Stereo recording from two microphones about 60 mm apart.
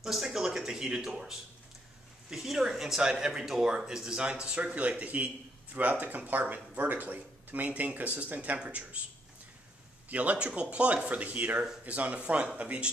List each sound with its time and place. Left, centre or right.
0.0 s speech: centre
10.0 s speech: right